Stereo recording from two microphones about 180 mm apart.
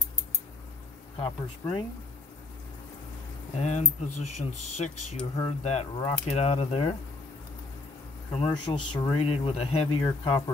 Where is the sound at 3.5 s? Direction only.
40° left (ahead or behind).